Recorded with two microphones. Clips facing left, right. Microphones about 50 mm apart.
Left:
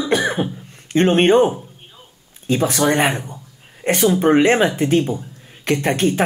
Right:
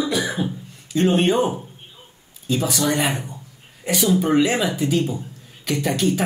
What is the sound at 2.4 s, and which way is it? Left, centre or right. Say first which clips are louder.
Speech: left 4 dB; left.